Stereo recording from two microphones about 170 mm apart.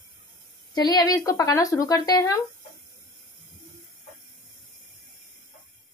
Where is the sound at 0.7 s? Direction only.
25° left (ahead or behind).